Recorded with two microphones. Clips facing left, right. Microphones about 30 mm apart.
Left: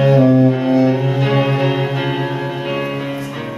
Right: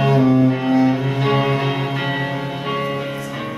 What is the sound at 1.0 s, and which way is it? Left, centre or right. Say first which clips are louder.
Music: left 2 dB; centre.